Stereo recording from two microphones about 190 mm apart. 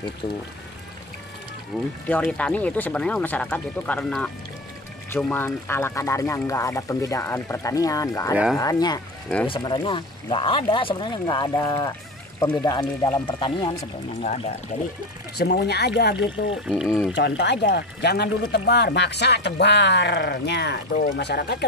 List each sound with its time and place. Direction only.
1.7 s speech: centre (ahead or behind); by 13.8 s 25° left (ahead or behind)
15.3 s speech: 60° left (ahead or behind)
16.6 s speech: centre (ahead or behind)
17.1 s speech: 65° left (ahead or behind)